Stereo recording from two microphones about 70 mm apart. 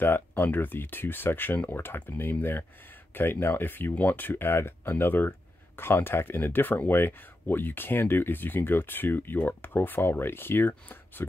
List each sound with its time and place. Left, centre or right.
0.3 s speech: left